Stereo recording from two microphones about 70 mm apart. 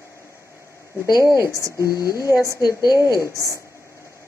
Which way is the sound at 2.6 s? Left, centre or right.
Left.